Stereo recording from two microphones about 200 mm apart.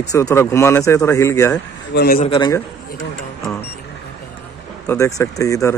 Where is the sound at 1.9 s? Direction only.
50° left (ahead or behind).